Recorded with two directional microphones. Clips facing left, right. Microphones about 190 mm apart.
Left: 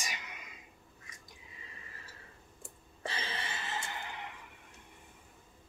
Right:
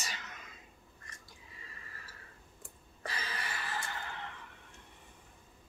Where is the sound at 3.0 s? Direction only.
25° left (ahead or behind).